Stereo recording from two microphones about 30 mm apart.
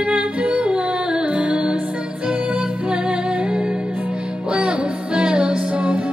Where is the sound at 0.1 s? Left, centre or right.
Right.